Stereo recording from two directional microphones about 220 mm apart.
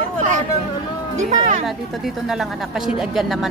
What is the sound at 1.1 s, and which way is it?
Speech, 35° right (ahead or behind).